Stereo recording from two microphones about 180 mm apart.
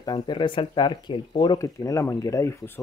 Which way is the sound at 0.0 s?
25° left (ahead or behind).